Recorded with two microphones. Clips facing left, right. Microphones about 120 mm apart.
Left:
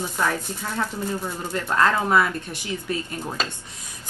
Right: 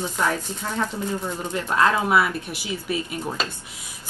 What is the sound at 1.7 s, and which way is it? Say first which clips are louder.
Speech: even; 10° right (ahead or behind).